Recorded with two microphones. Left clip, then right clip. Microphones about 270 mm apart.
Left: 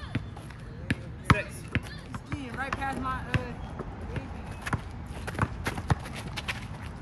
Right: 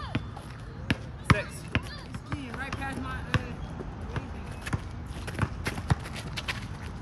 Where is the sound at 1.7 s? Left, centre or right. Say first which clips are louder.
Right 2 dB; centre.